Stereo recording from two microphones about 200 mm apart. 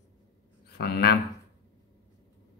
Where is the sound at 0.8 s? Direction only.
50° left (ahead or behind).